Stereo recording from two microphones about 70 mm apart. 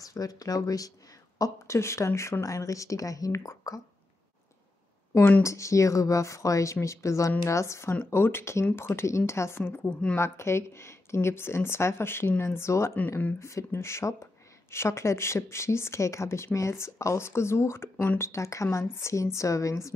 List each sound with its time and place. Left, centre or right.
0.0 s speech: left
1.4 s speech: left
5.4 s speech: left